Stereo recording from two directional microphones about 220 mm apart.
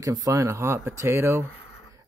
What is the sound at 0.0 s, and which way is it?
Speech, 15° right (ahead or behind).